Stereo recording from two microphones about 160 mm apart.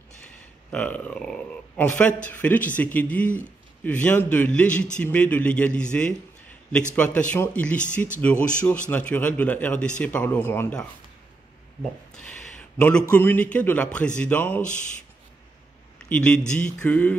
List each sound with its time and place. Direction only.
0.2 s a sound: 10° left (ahead or behind)
2.2 s a man's voice: 10° left (ahead or behind)
16.1 s a man's voice: 5° left (ahead or behind)